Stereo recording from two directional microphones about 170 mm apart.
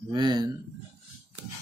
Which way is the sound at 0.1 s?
25° right (ahead or behind).